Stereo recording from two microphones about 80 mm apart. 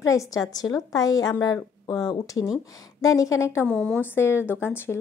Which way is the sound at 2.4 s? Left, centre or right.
Left.